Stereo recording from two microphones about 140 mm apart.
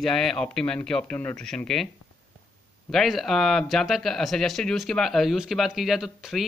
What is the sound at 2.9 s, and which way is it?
Speech, centre (ahead or behind).